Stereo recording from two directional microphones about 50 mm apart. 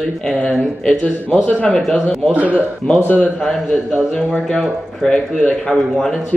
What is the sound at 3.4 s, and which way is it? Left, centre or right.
A man's voice, centre.